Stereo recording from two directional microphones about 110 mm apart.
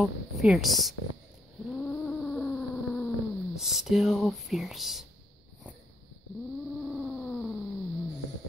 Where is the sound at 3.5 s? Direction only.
5° right (ahead or behind).